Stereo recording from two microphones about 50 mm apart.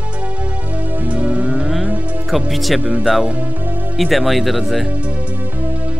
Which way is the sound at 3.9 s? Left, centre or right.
Centre.